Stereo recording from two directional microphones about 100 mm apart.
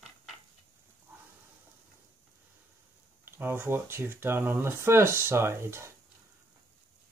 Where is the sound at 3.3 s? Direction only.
20° right (ahead or behind).